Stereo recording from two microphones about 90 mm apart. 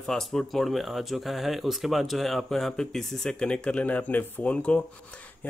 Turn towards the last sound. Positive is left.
turn(degrees=15)  # may be behind; listen again after turning